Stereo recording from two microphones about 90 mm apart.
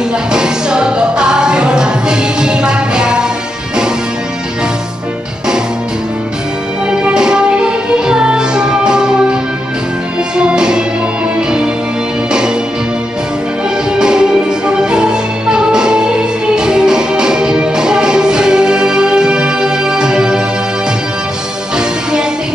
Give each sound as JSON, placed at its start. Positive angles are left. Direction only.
{"t": 0.3, "sound": "music", "side_deg": -10}
{"t": 6.9, "sound": "music", "side_deg": -10}
{"t": 13.9, "sound": "music", "side_deg": -10}